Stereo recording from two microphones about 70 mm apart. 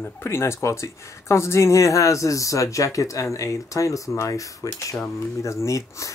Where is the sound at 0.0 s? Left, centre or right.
Left.